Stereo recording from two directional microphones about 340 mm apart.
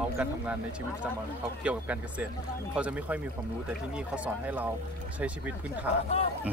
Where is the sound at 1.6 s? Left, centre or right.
Centre.